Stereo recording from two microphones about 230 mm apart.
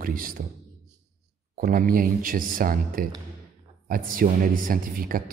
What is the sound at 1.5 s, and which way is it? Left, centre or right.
Speech, right.